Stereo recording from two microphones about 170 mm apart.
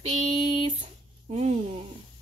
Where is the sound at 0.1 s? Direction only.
40° right (ahead or behind).